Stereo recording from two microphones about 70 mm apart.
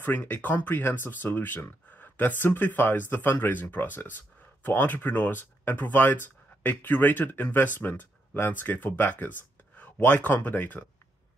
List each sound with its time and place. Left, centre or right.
0.0 s speech: left